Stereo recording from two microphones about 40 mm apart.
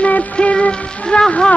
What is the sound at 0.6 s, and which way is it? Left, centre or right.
Speech, left.